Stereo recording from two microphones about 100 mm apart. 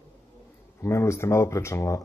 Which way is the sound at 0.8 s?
30° left (ahead or behind).